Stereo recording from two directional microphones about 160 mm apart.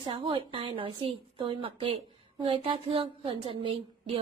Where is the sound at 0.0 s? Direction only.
35° right (ahead or behind).